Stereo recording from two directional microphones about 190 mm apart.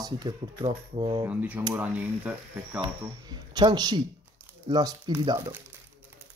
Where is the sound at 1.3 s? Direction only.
10° right (ahead or behind).